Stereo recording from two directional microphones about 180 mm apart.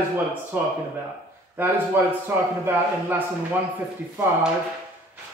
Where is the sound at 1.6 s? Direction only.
10° right (ahead or behind).